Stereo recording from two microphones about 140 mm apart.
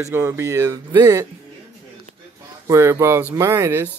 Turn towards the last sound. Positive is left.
turn(degrees=-20)  # may be behind; listen again after turning